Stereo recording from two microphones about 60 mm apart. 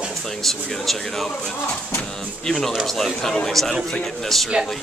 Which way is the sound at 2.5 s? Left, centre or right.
Centre.